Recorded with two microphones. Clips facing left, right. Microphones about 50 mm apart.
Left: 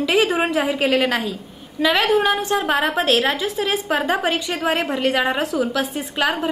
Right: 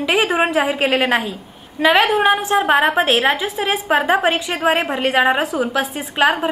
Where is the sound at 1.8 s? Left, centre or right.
Right.